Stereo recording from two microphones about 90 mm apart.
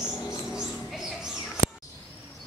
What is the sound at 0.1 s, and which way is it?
Mouse, 40° left (ahead or behind).